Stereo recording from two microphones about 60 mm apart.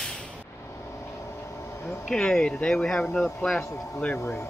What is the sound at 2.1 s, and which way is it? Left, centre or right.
Speech, centre.